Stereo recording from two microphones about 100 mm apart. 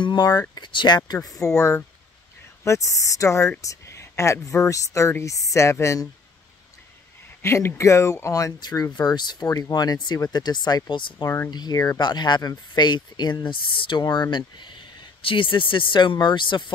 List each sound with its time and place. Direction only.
0.0 s speech: 45° left (ahead or behind)
1.4 s speech: 30° left (ahead or behind)
7.4 s speech: 25° left (ahead or behind); by 11.2 s 50° left (ahead or behind)
11.2 s speech: 25° left (ahead or behind)
11.5 s speech: 40° left (ahead or behind)
12.0 s speech: 45° left (ahead or behind)